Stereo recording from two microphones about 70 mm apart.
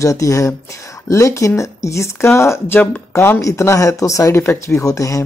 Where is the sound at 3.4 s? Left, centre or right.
Left.